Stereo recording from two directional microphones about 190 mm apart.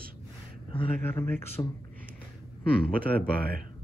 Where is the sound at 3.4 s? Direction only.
50° right (ahead or behind).